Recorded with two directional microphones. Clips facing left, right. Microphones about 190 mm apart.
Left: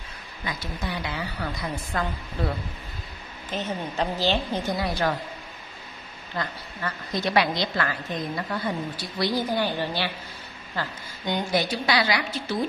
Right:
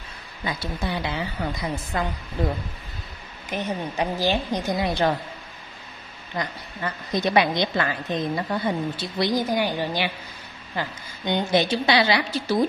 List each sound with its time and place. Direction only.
0.5 s a woman's voice: 25° right (ahead or behind)
6.3 s a woman's voice: 15° right (ahead or behind)